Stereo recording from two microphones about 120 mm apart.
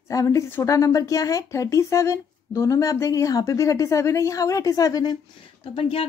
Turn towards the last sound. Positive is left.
turn(degrees=50)  # may be behind; listen again after turning